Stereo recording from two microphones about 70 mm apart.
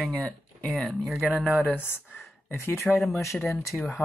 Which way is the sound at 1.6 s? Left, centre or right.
Left.